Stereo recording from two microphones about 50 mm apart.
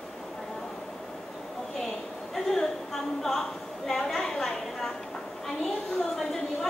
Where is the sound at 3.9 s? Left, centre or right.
Centre.